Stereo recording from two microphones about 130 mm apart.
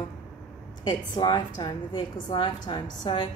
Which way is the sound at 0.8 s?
35° left (ahead or behind).